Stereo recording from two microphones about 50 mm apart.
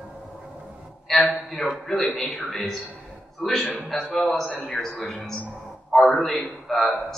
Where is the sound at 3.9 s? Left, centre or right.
Centre.